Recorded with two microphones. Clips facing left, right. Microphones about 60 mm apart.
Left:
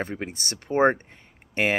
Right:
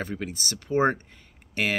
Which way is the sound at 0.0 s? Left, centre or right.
Left.